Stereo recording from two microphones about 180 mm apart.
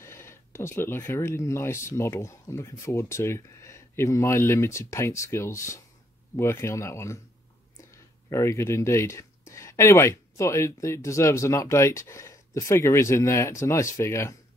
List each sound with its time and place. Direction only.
0.0 s speech: 15° left (ahead or behind)
8.3 s speech: 15° left (ahead or behind)